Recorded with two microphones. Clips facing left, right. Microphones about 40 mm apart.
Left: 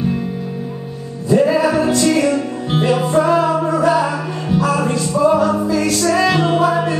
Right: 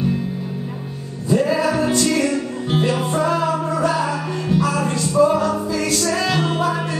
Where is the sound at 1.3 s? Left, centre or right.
Centre.